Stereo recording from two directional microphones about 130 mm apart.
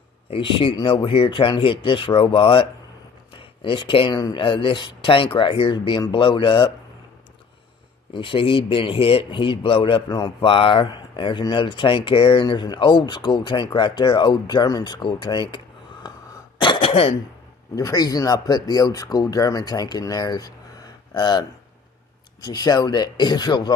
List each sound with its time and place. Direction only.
0.3 s speech: 40° left (ahead or behind)
8.1 s speech: 40° left (ahead or behind)
16.5 s throat clearing: 40° left (ahead or behind)
17.7 s speech: 30° left (ahead or behind)